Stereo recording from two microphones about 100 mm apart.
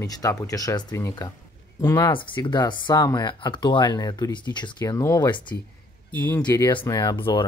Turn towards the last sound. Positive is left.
turn(degrees=60)  # may be behind; listen again after turning